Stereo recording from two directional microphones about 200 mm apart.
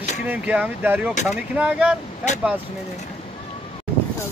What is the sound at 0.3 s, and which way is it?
Speech, 10° right (ahead or behind).